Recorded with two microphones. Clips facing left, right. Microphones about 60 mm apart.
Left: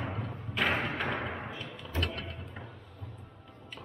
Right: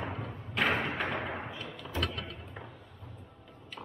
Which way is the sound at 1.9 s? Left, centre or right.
Left.